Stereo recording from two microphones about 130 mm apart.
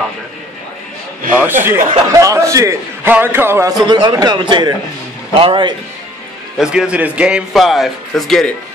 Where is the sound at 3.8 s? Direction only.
35° right (ahead or behind).